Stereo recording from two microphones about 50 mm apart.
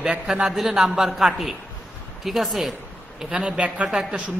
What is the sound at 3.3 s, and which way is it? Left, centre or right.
Speech, right.